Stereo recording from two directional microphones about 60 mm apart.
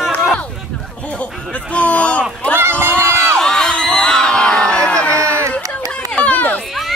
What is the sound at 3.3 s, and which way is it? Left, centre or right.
Crowd, centre.